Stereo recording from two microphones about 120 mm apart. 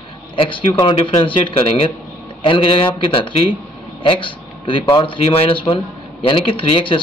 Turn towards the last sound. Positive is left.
turn(degrees=50)  # may be behind; listen again after turning